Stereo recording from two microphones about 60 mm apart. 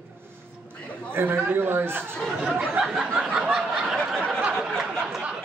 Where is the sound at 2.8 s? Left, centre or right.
Centre.